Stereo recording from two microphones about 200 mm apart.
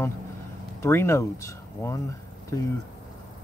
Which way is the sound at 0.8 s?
15° left (ahead or behind).